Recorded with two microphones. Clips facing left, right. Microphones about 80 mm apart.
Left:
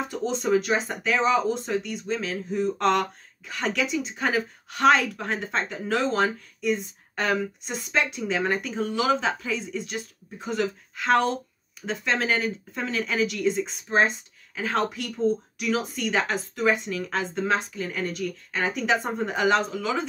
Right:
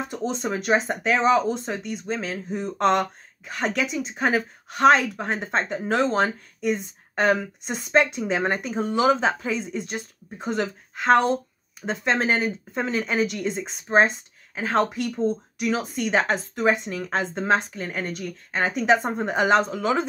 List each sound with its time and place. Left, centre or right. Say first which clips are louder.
0.1 s speech: left 7 dB; right